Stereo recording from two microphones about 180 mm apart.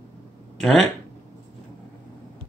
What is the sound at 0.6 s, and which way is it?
Speech, centre (ahead or behind).